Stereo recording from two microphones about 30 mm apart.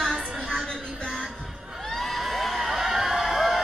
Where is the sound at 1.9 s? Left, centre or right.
Centre.